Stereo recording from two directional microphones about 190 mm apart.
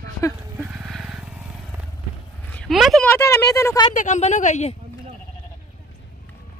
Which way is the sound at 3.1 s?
15° left (ahead or behind).